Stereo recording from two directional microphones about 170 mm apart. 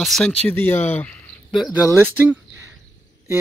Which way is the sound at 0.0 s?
5° left (ahead or behind).